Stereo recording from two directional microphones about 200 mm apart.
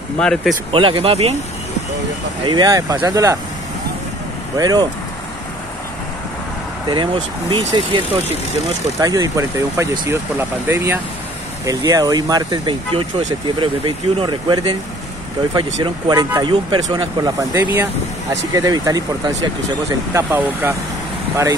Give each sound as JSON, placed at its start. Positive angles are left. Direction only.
{"t": 0.2, "sound": "speech", "side_deg": 0}
{"t": 0.7, "sound": "speech", "side_deg": -25}
{"t": 2.4, "sound": "speech", "side_deg": -20}
{"t": 4.6, "sound": "speech", "side_deg": -20}
{"t": 7.7, "sound": "speech", "side_deg": -25}
{"t": 20.2, "sound": "speech", "side_deg": -10}